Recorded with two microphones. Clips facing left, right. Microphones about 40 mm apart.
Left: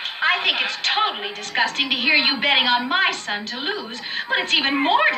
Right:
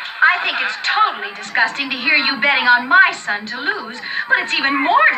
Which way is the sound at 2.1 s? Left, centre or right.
Centre.